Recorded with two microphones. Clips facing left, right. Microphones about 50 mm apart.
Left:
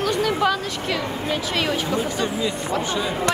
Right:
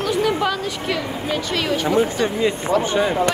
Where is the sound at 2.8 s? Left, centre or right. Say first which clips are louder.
Right 5 dB; right.